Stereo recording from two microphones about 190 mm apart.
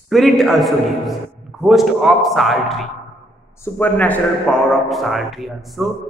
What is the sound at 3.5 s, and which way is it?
A man's voice, 10° left (ahead or behind).